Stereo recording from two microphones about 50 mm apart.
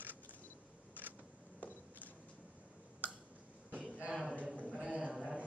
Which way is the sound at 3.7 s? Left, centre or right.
Right.